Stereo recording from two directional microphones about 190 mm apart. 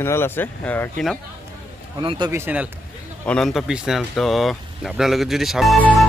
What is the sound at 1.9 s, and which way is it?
Speech, 25° right (ahead or behind).